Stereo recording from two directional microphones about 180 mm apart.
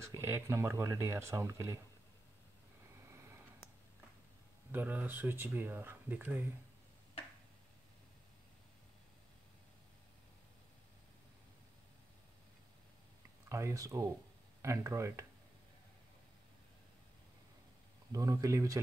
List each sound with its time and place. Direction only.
0.0 s speech: 15° right (ahead or behind)
3.1 s a sound: 15° right (ahead or behind)
4.7 s speech: 10° right (ahead or behind)
13.5 s speech: 15° right (ahead or behind)
18.1 s speech: 20° right (ahead or behind)